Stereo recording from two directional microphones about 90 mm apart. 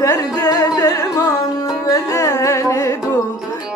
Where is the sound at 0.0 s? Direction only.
35° left (ahead or behind).